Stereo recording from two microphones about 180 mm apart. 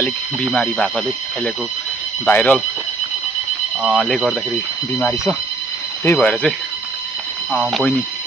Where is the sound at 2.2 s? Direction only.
10° left (ahead or behind).